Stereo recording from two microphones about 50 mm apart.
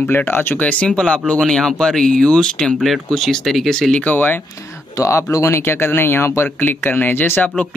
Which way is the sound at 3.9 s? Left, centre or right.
Left.